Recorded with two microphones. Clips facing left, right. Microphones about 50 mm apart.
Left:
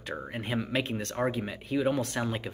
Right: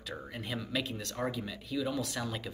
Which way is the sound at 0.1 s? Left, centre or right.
Left.